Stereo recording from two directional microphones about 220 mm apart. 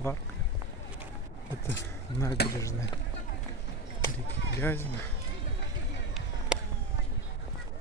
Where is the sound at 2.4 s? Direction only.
45° left (ahead or behind).